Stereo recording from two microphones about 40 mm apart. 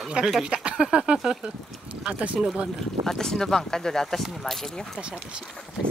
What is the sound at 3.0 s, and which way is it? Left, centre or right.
Speech, centre.